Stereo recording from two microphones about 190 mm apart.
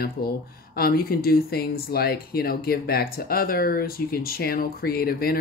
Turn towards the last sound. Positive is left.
turn(degrees=50)  # may be behind; listen again after turning